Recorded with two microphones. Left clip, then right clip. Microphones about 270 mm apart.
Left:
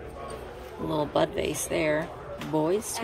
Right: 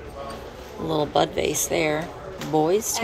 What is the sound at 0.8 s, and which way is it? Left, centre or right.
Speech, centre.